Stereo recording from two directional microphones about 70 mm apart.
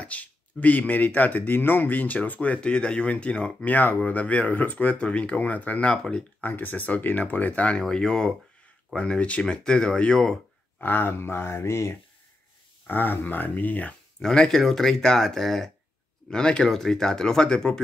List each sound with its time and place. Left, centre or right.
0.0 s speech: left
7.8 s speech: centre
10.8 s speech: left
12.8 s speech: left
14.2 s speech: centre